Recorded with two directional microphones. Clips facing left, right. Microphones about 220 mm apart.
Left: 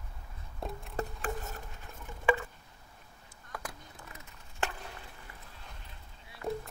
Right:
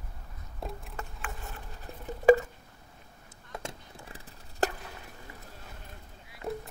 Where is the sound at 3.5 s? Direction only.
25° right (ahead or behind).